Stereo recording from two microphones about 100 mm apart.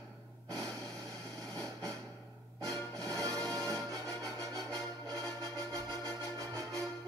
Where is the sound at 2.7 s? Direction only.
35° right (ahead or behind).